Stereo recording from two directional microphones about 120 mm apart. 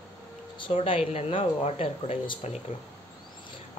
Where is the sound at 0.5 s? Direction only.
45° left (ahead or behind); by 2.6 s 65° left (ahead or behind).